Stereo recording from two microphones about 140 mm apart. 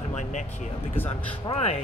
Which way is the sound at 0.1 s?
60° left (ahead or behind).